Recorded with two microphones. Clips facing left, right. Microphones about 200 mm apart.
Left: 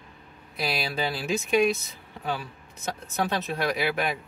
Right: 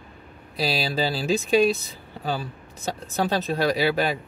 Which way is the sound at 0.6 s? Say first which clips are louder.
Right 4 dB; 30° right (ahead or behind).